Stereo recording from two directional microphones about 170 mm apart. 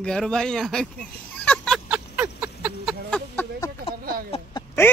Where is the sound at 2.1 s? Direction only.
10° right (ahead or behind).